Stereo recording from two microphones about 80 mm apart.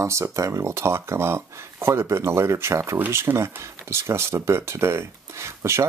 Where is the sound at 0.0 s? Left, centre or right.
Right.